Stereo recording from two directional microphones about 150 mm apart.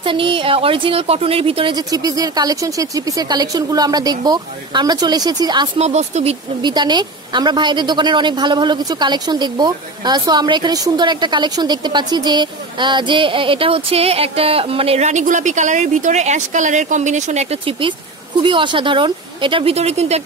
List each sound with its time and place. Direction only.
0.0 s a woman's voice: 35° right (ahead or behind)
5.8 s speech: 50° right (ahead or behind)
6.6 s a woman's voice: 30° right (ahead or behind); by 20.2 s 45° right (ahead or behind)